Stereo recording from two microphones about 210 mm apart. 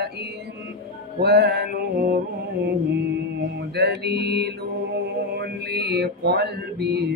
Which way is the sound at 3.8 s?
50° right (ahead or behind).